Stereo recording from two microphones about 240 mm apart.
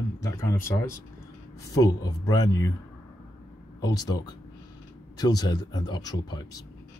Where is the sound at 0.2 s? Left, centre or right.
Centre.